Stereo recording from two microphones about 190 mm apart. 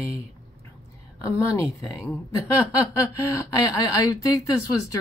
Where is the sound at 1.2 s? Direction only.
15° left (ahead or behind).